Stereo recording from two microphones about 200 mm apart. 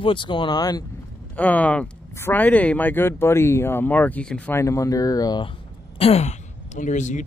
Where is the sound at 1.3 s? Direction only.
10° left (ahead or behind).